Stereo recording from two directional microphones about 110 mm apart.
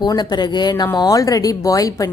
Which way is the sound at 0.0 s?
40° left (ahead or behind).